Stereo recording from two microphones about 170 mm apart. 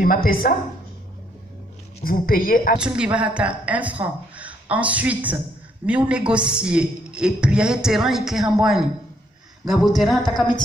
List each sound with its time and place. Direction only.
0.0 s a woman's voice: 55° left (ahead or behind)
2.0 s a woman's voice: 55° left (ahead or behind)
2.8 s a woman's voice: 5° right (ahead or behind)